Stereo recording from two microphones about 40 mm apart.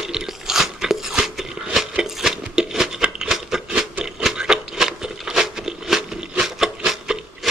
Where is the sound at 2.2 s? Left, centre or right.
Centre.